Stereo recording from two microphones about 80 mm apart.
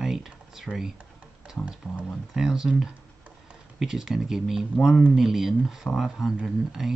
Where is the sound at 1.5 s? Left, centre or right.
Centre.